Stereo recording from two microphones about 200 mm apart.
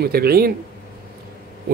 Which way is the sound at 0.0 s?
50° right (ahead or behind).